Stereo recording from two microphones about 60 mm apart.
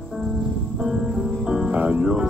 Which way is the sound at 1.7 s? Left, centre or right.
Right.